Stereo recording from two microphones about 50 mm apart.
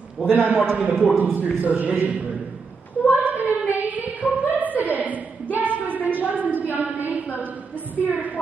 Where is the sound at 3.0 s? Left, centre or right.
Right.